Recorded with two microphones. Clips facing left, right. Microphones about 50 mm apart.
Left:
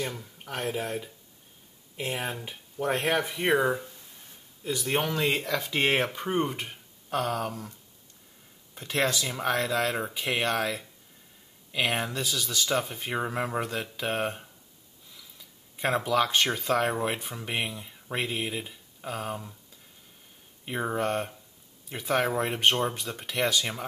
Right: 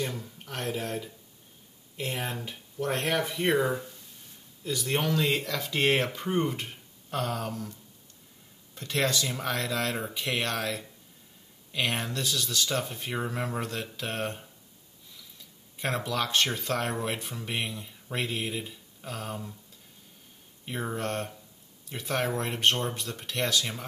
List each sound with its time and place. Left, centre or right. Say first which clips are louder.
0.0 s speech: even; centre
8.7 s speech: left 1 dB; centre
13.1 s speech: left 3 dB; centre
16.0 s speech: left 3 dB; centre
20.6 s speech: left 4 dB; centre